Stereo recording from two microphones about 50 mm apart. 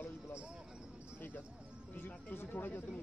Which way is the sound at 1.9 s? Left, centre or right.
Left.